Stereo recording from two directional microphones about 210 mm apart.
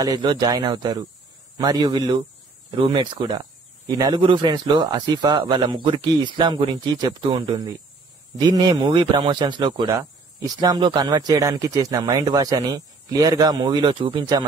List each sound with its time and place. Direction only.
0.0 s a man's voice: 20° right (ahead or behind)